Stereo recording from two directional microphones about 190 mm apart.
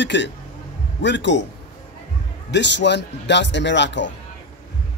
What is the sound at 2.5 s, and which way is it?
A man's voice, 65° left (ahead or behind).